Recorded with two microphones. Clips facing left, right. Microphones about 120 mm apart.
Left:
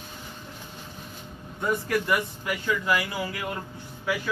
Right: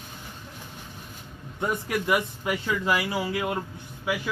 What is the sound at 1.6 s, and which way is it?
Speech, 15° right (ahead or behind).